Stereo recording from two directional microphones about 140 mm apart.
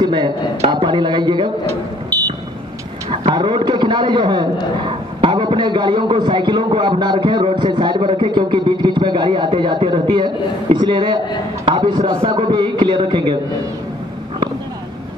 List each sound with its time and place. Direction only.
0.0 s a man's voice: 30° right (ahead or behind)
3.1 s a man's voice: 35° right (ahead or behind)